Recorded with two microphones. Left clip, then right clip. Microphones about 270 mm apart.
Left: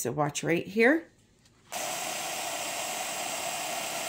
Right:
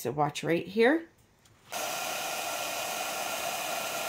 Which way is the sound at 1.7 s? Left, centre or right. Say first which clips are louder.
Even; centre.